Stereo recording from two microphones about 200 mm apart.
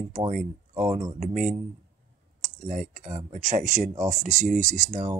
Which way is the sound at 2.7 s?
40° right (ahead or behind).